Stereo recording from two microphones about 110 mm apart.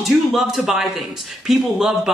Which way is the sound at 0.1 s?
5° right (ahead or behind).